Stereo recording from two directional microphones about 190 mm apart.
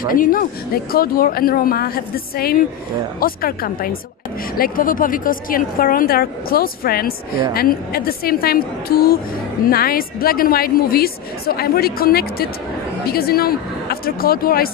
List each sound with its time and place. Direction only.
0.0 s a woman's voice: 45° left (ahead or behind)